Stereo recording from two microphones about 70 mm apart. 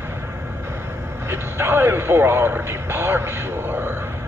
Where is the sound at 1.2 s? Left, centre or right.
Right.